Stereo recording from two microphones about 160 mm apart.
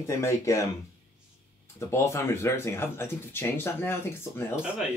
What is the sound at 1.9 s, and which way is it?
Speech, 15° left (ahead or behind).